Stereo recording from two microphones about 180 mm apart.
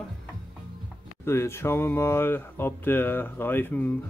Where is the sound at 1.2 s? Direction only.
15° left (ahead or behind).